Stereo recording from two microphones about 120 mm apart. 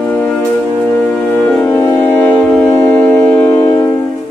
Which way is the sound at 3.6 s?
35° left (ahead or behind).